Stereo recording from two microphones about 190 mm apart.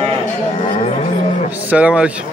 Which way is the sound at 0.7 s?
35° left (ahead or behind).